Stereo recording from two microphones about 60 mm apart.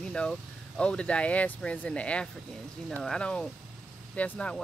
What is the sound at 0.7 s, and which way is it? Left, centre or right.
Speech, centre.